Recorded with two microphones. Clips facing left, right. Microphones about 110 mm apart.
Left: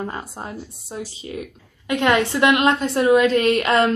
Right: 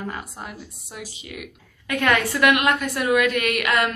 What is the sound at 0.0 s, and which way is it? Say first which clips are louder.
Speech: left 3 dB; 30° left (ahead or behind).